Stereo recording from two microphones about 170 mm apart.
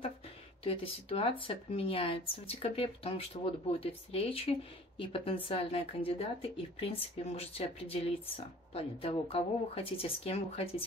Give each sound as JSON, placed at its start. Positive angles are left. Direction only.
{"t": 0.7, "sound": "speech", "side_deg": 35}